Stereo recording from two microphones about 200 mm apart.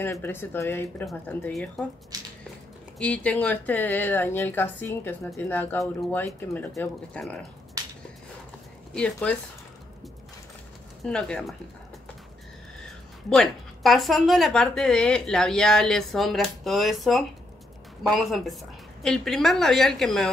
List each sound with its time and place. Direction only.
0.0 s speech: 10° left (ahead or behind)
2.1 s squish: 20° right (ahead or behind)
3.0 s speech: 5° left (ahead or behind)
7.8 s a sound: 15° right (ahead or behind)
8.9 s a woman's voice: 5° left (ahead or behind)
11.1 s a woman's voice: 5° left (ahead or behind)
12.8 s a woman's voice: centre (ahead or behind)